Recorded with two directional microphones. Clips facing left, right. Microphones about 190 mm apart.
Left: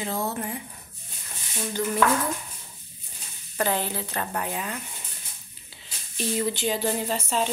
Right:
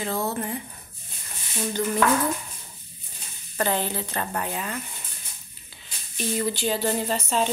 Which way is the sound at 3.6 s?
5° left (ahead or behind).